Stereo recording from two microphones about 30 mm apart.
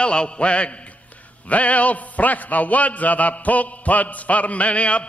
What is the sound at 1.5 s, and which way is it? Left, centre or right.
A man's voice, left.